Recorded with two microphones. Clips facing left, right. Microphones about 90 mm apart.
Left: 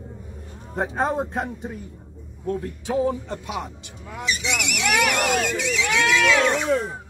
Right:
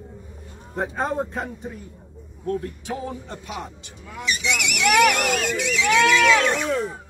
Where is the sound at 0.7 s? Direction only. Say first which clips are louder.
Left 1 dB; 20° left (ahead or behind).